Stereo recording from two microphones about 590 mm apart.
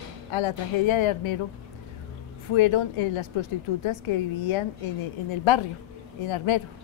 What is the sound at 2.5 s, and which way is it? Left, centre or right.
A woman's voice, left.